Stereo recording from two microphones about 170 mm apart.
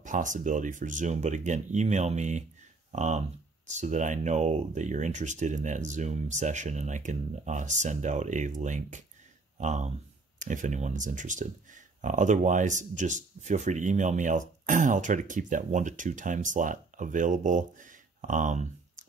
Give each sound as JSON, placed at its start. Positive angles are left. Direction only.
{"t": 0.0, "sound": "speech", "side_deg": -50}